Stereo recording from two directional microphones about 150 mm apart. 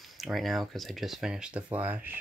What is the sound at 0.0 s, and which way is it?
Speech, centre (ahead or behind).